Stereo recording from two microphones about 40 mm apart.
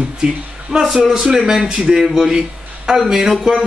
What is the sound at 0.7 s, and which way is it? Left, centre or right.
A man's voice, centre.